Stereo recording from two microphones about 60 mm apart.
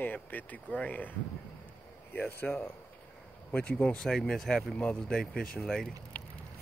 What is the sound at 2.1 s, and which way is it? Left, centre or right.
Speech, left.